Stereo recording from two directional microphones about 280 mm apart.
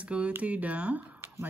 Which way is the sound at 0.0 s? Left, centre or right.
Centre.